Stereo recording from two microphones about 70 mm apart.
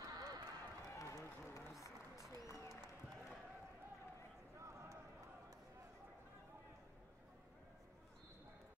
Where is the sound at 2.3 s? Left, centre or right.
Left.